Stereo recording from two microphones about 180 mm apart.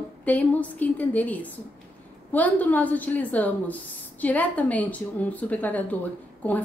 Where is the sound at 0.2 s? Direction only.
10° left (ahead or behind).